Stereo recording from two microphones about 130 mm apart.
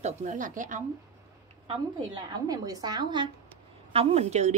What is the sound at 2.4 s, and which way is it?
Speech, 30° right (ahead or behind).